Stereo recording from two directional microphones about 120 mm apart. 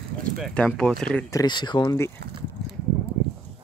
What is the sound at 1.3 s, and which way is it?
Speech, 35° left (ahead or behind).